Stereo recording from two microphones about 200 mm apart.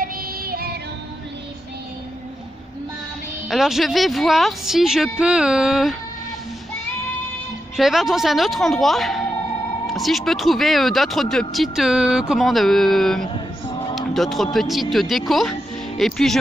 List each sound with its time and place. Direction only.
0.0 s music: 50° right (ahead or behind)
3.4 s speech: centre (ahead or behind)
7.7 s speech: centre (ahead or behind)
13.2 s a sound: 20° left (ahead or behind)
13.9 s speech: centre (ahead or behind)